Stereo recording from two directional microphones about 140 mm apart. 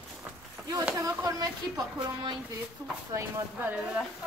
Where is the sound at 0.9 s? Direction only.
25° right (ahead or behind).